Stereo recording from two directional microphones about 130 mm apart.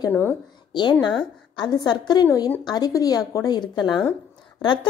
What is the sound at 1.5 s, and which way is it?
A woman's voice, 30° left (ahead or behind).